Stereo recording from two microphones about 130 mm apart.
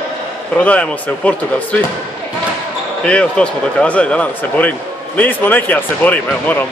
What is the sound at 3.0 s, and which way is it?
Speech, 10° left (ahead or behind).